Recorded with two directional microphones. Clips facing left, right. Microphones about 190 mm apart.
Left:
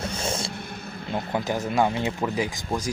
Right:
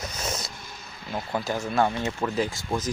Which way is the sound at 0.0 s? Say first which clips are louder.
Left 4 dB; 30° left (ahead or behind).